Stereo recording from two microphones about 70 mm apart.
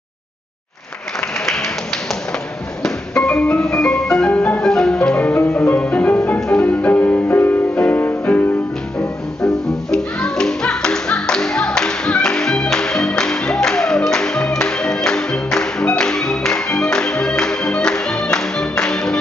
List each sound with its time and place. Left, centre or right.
1.4 s music: centre
2.8 s music: centre
4.3 s music: left
4.6 s music: centre; by 8.5 s left
9.4 s music: centre